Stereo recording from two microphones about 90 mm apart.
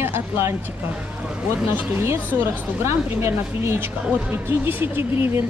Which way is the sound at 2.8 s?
30° right (ahead or behind).